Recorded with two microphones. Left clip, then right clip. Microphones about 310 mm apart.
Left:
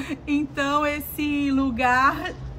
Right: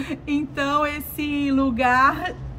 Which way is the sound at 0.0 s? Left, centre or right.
Centre.